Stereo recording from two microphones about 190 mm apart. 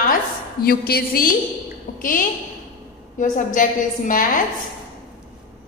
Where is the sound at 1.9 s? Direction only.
45° left (ahead or behind).